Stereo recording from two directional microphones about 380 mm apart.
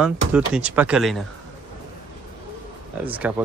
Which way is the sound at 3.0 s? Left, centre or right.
Centre.